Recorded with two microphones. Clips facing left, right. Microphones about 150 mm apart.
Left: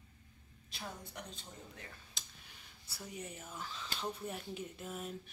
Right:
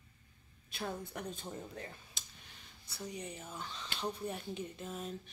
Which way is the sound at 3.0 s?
5° left (ahead or behind).